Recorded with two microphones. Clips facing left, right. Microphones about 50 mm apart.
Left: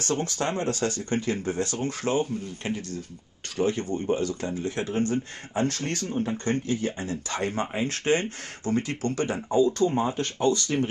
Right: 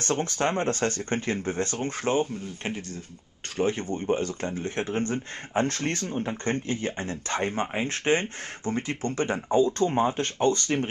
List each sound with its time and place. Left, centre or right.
0.0 s speech: right